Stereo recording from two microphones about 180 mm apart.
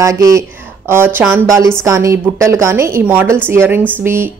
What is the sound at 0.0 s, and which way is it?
A woman's voice, 20° right (ahead or behind).